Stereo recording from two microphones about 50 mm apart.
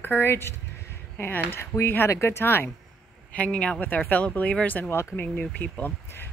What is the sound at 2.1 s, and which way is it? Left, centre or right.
Speech, left.